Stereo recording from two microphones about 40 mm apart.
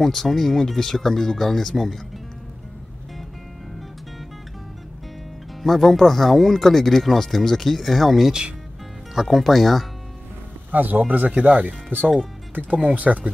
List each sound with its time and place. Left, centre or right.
0.0 s speech: centre
5.6 s speech: centre
10.7 s speech: right